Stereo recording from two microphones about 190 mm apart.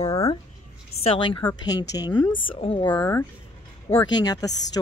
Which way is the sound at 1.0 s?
30° left (ahead or behind).